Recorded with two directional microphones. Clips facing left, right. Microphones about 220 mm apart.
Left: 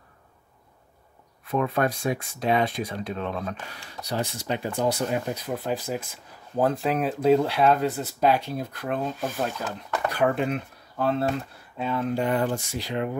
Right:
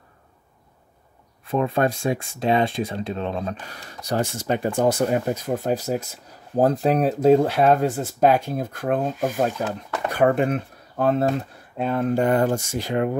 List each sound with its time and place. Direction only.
1.4 s speech: 25° right (ahead or behind)
3.7 s speech: 45° right (ahead or behind)